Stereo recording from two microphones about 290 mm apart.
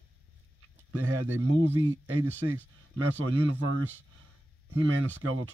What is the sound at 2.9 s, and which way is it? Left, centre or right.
Speech, right.